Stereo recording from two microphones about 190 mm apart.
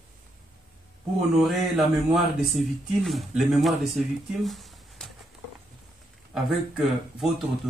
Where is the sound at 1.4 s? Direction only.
Centre (ahead or behind).